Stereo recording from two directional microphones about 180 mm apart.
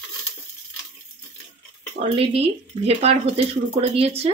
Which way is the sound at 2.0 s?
35° right (ahead or behind).